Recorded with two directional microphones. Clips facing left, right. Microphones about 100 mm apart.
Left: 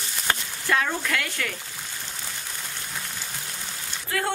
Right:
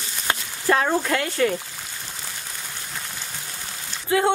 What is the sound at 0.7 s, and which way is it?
Speech, 35° right (ahead or behind).